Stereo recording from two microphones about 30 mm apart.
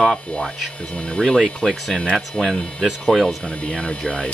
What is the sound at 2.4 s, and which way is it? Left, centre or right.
Speech, left.